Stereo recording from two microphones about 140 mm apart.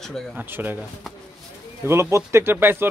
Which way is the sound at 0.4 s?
15° right (ahead or behind).